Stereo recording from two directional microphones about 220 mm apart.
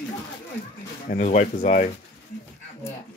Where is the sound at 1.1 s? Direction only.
35° left (ahead or behind).